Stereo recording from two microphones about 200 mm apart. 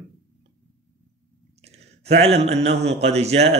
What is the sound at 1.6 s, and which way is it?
Speech, 30° right (ahead or behind).